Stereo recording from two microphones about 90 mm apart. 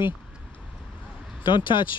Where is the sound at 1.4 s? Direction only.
65° left (ahead or behind).